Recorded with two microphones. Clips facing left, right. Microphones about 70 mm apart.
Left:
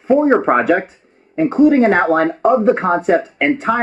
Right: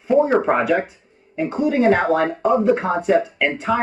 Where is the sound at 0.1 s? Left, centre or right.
Left.